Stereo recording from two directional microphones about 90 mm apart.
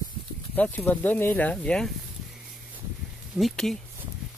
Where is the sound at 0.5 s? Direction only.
20° left (ahead or behind).